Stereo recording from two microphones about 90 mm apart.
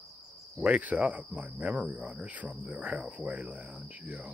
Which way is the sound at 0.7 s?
15° right (ahead or behind).